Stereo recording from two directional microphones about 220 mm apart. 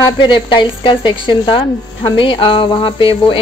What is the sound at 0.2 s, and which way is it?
Speech, 20° left (ahead or behind).